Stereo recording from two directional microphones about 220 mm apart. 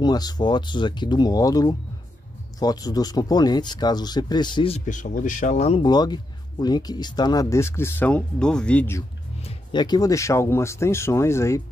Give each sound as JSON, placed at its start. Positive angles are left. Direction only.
{"t": 0.0, "sound": "speech", "side_deg": 20}
{"t": 9.4, "sound": "speech", "side_deg": 25}